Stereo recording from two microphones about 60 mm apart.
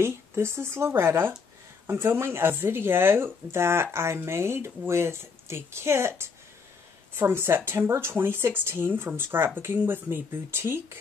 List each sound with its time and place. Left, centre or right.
0.0 s speech: right